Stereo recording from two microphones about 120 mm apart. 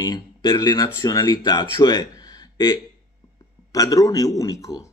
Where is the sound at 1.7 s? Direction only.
35° left (ahead or behind).